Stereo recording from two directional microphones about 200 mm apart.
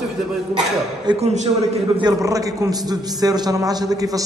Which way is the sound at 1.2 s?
35° right (ahead or behind).